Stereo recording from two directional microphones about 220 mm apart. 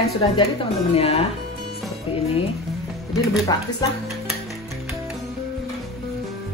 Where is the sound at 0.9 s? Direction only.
25° left (ahead or behind).